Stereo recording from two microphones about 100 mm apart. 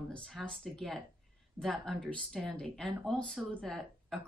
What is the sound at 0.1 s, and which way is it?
Speech, 5° left (ahead or behind).